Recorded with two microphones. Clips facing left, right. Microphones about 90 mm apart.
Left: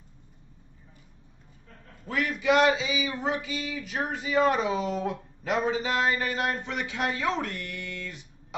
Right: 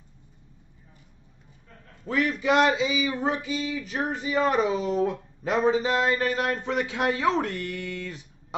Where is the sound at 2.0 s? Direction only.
35° right (ahead or behind).